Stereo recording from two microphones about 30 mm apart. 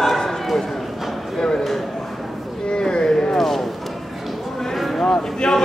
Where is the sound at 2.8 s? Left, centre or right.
Left.